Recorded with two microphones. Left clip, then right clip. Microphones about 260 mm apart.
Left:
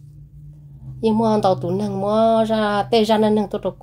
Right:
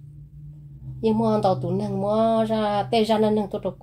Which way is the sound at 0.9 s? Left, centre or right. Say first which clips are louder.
Left 4 dB; left.